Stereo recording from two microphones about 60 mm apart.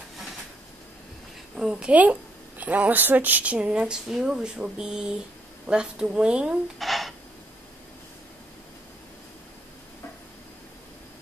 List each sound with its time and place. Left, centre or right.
1.5 s a woman's voice: centre
1.9 s a woman's voice: right
6.8 s a sound: centre